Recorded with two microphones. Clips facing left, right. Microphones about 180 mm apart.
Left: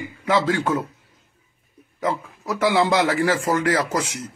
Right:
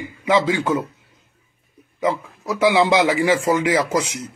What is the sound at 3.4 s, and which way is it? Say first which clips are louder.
Speech: right 2 dB; 5° right (ahead or behind).